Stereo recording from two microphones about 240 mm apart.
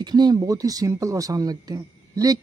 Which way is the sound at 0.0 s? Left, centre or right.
Centre.